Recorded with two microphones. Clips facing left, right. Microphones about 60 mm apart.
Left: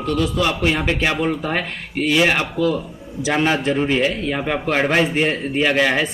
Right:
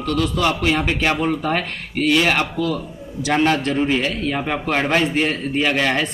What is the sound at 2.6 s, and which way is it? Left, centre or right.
Speech, left.